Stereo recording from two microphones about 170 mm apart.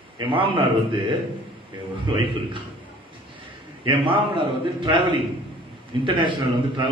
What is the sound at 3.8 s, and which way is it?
A man's voice, 30° right (ahead or behind).